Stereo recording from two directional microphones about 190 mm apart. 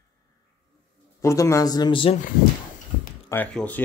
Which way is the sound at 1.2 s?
15° left (ahead or behind).